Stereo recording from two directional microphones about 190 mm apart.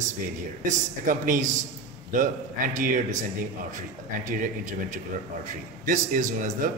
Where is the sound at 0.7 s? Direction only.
45° right (ahead or behind).